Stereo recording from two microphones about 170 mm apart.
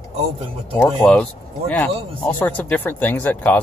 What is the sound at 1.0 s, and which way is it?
Speech, 5° left (ahead or behind).